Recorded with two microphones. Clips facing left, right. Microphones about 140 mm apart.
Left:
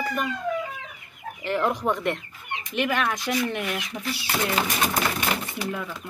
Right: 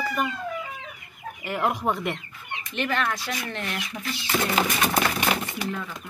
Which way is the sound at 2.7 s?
10° left (ahead or behind).